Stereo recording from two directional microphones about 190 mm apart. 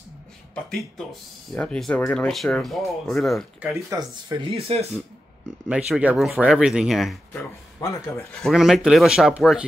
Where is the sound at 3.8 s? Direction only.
20° right (ahead or behind).